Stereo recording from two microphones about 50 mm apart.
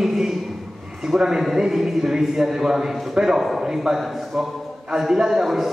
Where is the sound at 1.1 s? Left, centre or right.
Centre.